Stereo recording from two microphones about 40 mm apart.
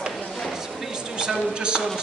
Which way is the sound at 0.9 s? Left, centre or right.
Centre.